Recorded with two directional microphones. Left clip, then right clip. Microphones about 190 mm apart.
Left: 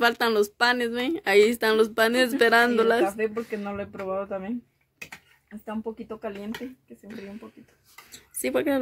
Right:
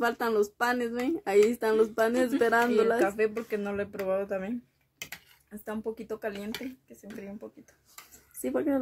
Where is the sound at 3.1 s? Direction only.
30° right (ahead or behind).